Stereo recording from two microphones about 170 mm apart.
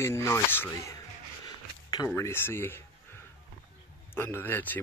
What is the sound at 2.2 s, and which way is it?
Speech, 15° left (ahead or behind).